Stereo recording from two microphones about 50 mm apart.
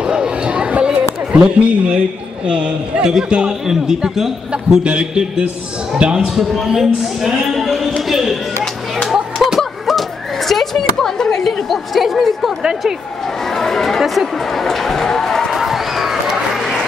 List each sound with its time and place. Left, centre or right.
0.0 s chatter: centre
1.3 s a man's voice: right
4.5 s a man's voice: right
6.2 s speech: centre
9.4 s fowl: centre
10.5 s speech: centre
13.6 s speech: centre
15.5 s a sound: centre